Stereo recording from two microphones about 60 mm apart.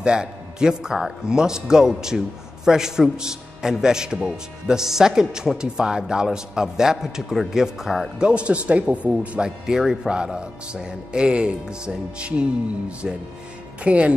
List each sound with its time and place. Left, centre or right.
0.0 s a man's voice: centre
8.2 s speech: centre
9.7 s a man's voice: centre